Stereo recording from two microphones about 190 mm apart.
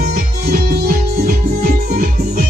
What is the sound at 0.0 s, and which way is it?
Music, 55° right (ahead or behind).